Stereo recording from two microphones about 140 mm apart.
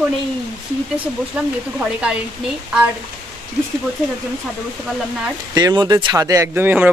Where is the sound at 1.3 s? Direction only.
10° right (ahead or behind).